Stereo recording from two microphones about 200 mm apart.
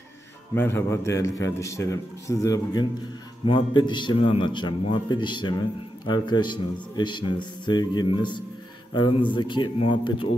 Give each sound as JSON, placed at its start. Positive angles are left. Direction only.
{"t": 0.6, "sound": "a man's voice", "side_deg": 10}